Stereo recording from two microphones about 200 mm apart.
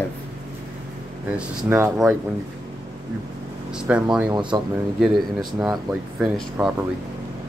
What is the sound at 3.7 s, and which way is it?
Speech, 5° right (ahead or behind).